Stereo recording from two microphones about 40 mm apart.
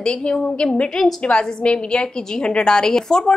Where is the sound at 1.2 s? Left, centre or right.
Left.